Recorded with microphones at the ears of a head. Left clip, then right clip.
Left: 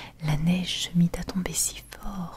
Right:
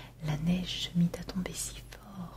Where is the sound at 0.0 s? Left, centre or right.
Left.